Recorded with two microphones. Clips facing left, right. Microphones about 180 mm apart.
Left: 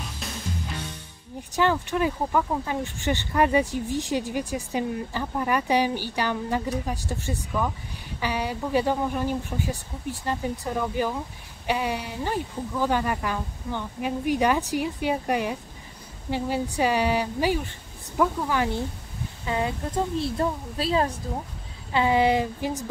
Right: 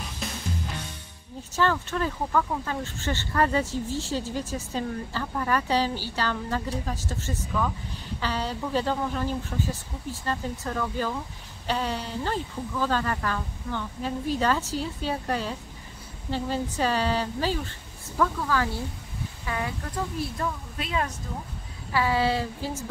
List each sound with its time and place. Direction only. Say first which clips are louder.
0.2 s music: right 3 dB; centre (ahead or behind)
1.5 s a woman's voice: left 2 dB; 15° left (ahead or behind); by 21.2 s 30° left (ahead or behind)
21.9 s speech: left 4 dB; 20° left (ahead or behind)